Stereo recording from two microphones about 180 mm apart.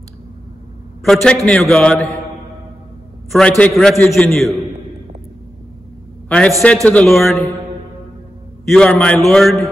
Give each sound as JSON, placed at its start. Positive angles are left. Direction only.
{"t": 1.0, "sound": "a man's voice", "side_deg": 5}
{"t": 3.3, "sound": "a man's voice", "side_deg": 5}
{"t": 6.2, "sound": "a man's voice", "side_deg": 5}
{"t": 8.6, "sound": "a man's voice", "side_deg": 5}